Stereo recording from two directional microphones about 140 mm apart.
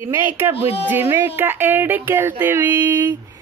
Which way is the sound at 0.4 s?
15° right (ahead or behind).